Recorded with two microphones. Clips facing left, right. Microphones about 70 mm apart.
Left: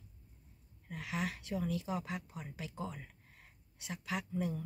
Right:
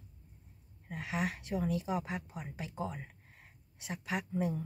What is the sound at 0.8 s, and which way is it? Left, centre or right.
Speech, right.